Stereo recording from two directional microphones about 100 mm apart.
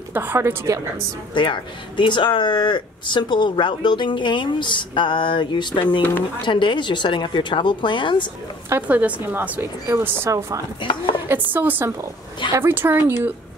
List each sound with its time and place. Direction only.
0.1 s speech: 20° right (ahead or behind)
1.3 s speech: 55° left (ahead or behind)
8.8 s a woman's voice: 15° right (ahead or behind)
10.8 s speech: 55° left (ahead or behind)
11.2 s speech: 20° right (ahead or behind)